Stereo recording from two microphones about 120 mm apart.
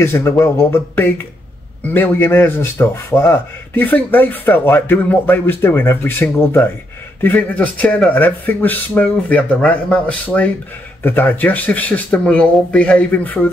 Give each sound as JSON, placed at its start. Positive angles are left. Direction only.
{"t": 0.0, "sound": "speech", "side_deg": 20}